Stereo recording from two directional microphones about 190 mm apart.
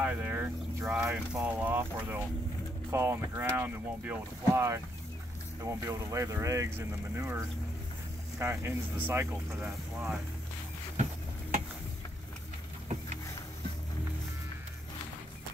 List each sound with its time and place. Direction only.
0.0 s speech: 10° right (ahead or behind)